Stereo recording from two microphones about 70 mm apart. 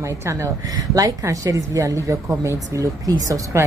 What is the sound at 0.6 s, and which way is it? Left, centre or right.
A woman's voice, right.